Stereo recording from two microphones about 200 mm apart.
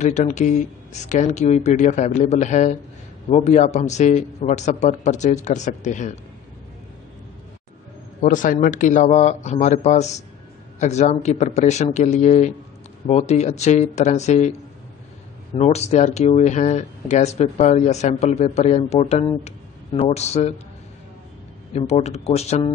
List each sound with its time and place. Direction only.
0.0 s speech: 35° left (ahead or behind)
8.2 s speech: 40° left (ahead or behind)
15.5 s speech: 30° left (ahead or behind)
21.7 s speech: 30° left (ahead or behind)